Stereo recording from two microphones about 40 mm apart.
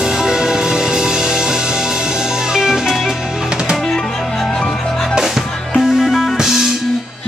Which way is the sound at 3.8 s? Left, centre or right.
Centre.